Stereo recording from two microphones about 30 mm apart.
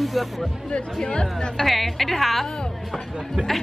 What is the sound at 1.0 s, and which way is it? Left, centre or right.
Speech, left.